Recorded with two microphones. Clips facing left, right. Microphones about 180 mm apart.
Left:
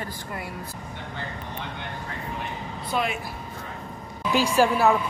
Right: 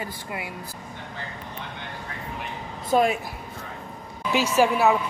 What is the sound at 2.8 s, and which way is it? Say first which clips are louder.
Speech: right 7 dB; 40° right (ahead or behind).